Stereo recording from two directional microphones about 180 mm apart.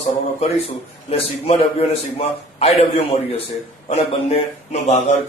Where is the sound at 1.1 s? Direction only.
35° left (ahead or behind).